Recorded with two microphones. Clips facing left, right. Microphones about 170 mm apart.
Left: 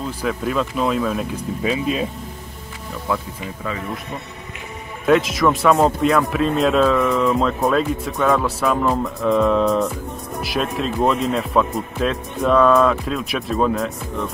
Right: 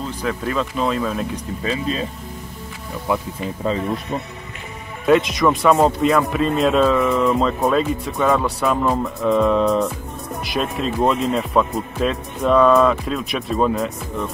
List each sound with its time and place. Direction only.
0.2 s speech: 5° left (ahead or behind)
3.1 s speech: 15° right (ahead or behind)
3.6 s speech: 30° right (ahead or behind)
5.0 s speech: centre (ahead or behind)